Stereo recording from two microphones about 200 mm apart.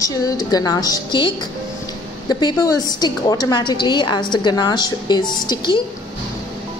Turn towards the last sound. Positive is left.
turn(degrees=20)  # may be behind; listen again after turning